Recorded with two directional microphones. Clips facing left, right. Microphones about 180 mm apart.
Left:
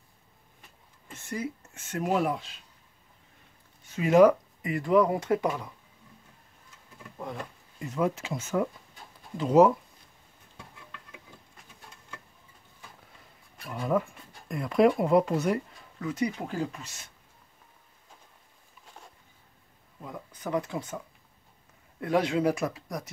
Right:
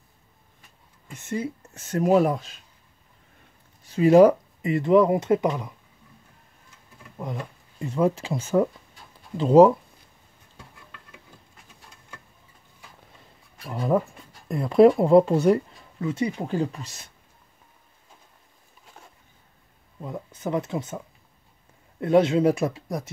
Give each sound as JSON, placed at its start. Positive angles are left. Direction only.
{"t": 1.0, "sound": "speech", "side_deg": -20}
{"t": 1.6, "sound": "speech", "side_deg": -40}
{"t": 3.8, "sound": "speech", "side_deg": -35}
{"t": 7.8, "sound": "speech", "side_deg": -30}
{"t": 13.7, "sound": "speech", "side_deg": -30}
{"t": 20.0, "sound": "speech", "side_deg": -25}
{"t": 22.0, "sound": "speech", "side_deg": -25}